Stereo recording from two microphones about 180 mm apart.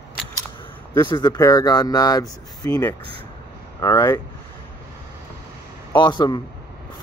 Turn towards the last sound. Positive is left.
turn(degrees=25)  # may be behind; listen again after turning